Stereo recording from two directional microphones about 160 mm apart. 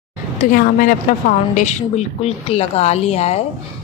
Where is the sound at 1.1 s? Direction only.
55° left (ahead or behind).